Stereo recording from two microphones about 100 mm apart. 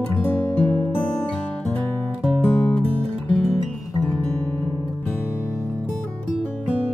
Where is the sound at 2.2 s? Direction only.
65° right (ahead or behind).